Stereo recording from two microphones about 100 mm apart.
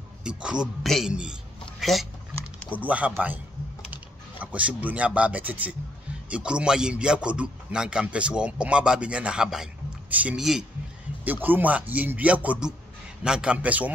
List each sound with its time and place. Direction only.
0.2 s a man's voice: 10° right (ahead or behind)
2.7 s a man's voice: 15° right (ahead or behind)
3.9 s mechanisms: 15° right (ahead or behind)
6.2 s a man's voice: 10° right (ahead or behind)
11.4 s a man's voice: 15° right (ahead or behind)